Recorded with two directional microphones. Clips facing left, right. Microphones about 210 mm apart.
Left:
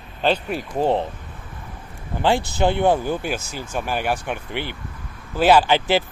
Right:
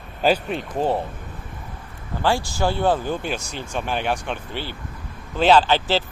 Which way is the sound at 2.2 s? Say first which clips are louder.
Left 2 dB; 20° left (ahead or behind).